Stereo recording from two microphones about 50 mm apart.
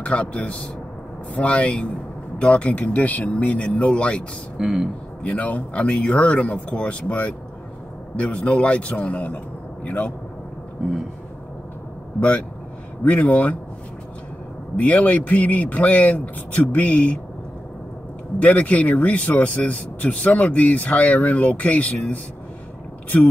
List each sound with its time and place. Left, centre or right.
0.0 s speech: left
4.6 s speech: centre
5.2 s speech: left
12.2 s speech: left
14.8 s speech: left
18.4 s speech: left